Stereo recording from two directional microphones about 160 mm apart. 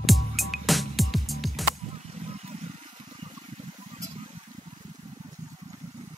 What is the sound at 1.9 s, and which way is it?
Vehicle, 40° right (ahead or behind).